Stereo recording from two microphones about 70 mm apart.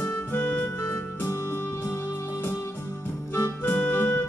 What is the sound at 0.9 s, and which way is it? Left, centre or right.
Music, left.